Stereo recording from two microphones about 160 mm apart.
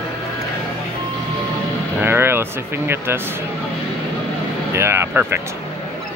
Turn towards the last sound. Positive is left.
turn(degrees=-15)  # may be behind; listen again after turning